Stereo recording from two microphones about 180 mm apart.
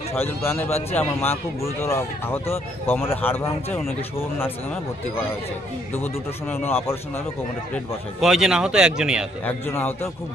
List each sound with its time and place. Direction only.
0.1 s speech: 10° left (ahead or behind)
6.5 s speech: 10° left (ahead or behind)
8.2 s a man's voice: centre (ahead or behind)
9.4 s speech: 10° left (ahead or behind)